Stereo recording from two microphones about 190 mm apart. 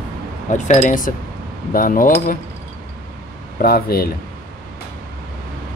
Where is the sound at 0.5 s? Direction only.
40° left (ahead or behind).